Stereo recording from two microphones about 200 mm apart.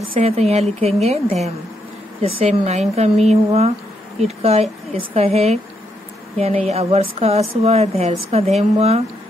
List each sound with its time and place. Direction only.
0.1 s a woman's voice: 30° right (ahead or behind)